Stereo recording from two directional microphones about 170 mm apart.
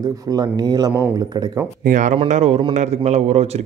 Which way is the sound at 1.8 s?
50° right (ahead or behind).